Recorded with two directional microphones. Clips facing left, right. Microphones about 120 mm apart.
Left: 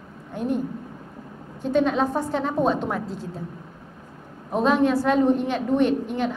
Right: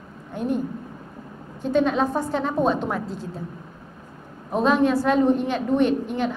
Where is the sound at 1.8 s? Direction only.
20° right (ahead or behind).